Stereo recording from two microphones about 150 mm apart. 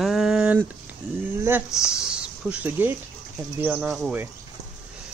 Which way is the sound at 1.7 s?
5° right (ahead or behind).